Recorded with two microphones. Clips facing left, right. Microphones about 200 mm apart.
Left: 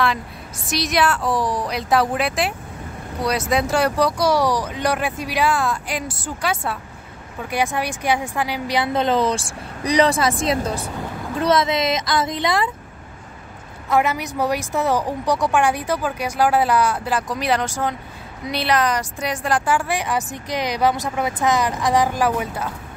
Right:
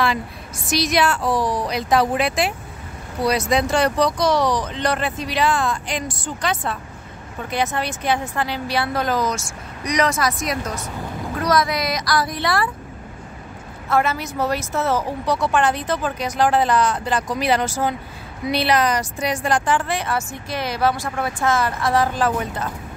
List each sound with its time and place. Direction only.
0.7 s a woman's voice: centre (ahead or behind); by 12.6 s 20° left (ahead or behind)
13.8 s a woman's voice: 15° left (ahead or behind)